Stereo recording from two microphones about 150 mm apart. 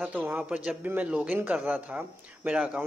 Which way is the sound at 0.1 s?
10° right (ahead or behind).